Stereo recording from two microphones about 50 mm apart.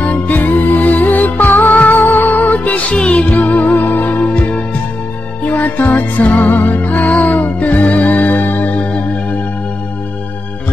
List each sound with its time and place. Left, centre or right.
0.0 s music: left